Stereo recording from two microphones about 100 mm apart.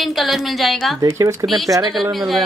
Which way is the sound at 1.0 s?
35° right (ahead or behind).